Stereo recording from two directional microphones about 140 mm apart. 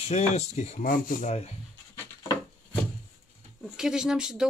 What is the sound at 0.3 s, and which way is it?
Speech, 55° left (ahead or behind).